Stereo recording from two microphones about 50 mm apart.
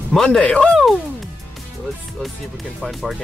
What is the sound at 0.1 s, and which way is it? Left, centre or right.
Speech, centre.